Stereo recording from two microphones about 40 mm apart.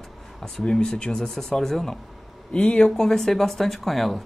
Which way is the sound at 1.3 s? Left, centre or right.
Centre.